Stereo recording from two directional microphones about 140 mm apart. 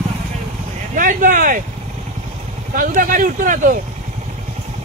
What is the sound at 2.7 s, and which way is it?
Speech, 80° right.